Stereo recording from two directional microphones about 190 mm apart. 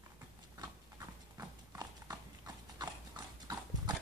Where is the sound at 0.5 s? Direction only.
20° right (ahead or behind).